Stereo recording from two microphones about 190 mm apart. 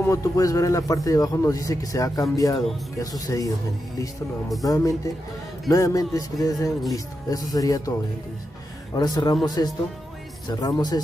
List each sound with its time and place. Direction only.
0.0 s speech: 15° left (ahead or behind)
4.6 s speech: 15° left (ahead or behind)
8.9 s speech: 20° left (ahead or behind)
10.5 s speech: 20° left (ahead or behind)